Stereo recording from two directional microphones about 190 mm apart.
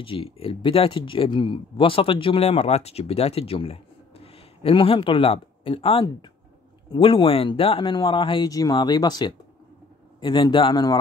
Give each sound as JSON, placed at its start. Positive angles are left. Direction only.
{"t": 0.0, "sound": "speech", "side_deg": 25}